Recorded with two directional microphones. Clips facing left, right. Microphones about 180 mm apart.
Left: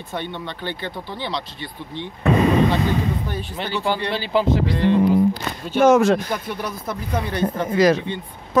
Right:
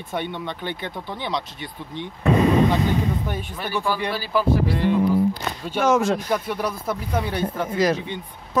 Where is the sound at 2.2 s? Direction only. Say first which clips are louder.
Left 1 dB; 80° left.